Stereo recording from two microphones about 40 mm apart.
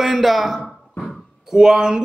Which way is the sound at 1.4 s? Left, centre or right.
Centre.